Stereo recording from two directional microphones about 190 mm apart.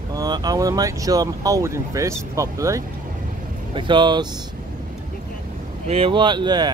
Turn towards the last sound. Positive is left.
turn(degrees=-25)  # may be behind; listen again after turning